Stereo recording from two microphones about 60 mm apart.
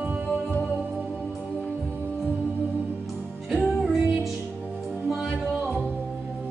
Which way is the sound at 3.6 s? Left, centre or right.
Centre.